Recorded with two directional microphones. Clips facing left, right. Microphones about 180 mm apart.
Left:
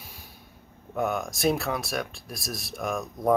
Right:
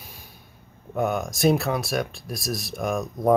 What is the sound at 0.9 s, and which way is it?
Speech, centre (ahead or behind).